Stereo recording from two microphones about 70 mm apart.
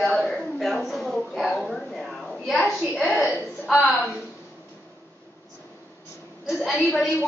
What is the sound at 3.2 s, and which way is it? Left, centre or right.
Speech, centre.